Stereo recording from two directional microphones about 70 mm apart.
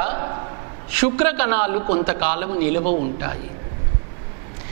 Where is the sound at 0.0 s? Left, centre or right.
Centre.